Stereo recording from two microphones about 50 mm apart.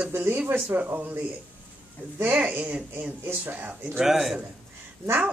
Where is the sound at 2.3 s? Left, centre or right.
Right.